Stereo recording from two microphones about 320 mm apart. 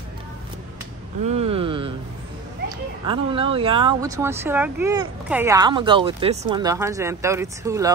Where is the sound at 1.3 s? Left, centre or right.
Centre.